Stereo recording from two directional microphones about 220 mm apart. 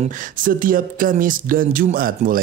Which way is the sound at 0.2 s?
40° right (ahead or behind).